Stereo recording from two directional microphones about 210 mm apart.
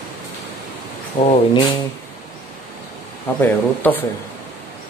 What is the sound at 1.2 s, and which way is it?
Speech, 25° left (ahead or behind).